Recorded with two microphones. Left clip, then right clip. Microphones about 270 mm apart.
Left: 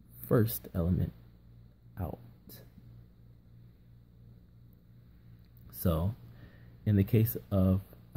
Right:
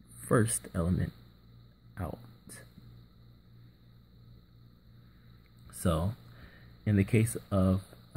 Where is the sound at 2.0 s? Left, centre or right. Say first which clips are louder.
Right 1 dB; centre.